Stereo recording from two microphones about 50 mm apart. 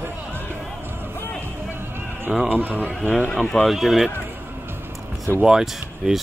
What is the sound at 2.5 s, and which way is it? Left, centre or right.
Speech, right.